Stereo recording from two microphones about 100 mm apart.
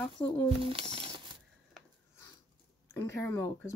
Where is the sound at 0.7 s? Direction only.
75° right (ahead or behind).